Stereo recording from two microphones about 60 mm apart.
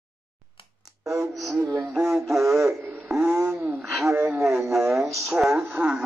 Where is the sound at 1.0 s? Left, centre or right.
Right.